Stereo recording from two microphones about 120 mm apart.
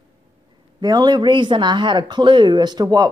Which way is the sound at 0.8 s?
35° right (ahead or behind).